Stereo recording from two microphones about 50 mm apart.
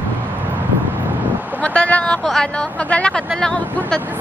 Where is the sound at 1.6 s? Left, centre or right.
Left.